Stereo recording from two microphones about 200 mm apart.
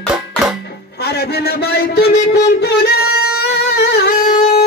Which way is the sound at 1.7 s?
50° left (ahead or behind).